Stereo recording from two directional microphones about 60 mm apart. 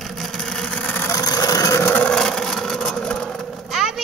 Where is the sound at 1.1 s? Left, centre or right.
Left.